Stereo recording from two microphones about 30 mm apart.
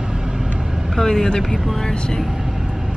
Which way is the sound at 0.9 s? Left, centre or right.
Centre.